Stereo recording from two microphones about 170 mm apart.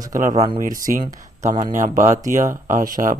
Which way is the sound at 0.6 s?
55° right (ahead or behind).